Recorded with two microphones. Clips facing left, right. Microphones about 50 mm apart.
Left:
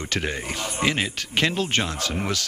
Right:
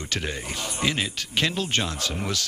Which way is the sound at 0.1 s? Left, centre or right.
Left.